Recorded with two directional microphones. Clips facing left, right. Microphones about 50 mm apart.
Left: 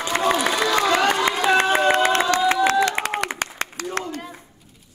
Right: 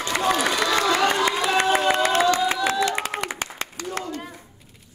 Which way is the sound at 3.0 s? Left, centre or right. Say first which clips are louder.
Left 3 dB; left.